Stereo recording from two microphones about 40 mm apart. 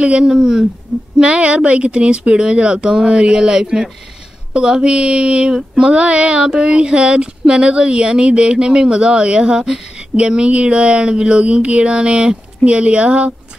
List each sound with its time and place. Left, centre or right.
0.0 s speech: right
0.3 s speech: centre
1.2 s speech: right